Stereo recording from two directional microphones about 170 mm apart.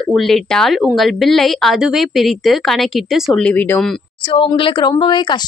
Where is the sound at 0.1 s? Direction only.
Centre (ahead or behind).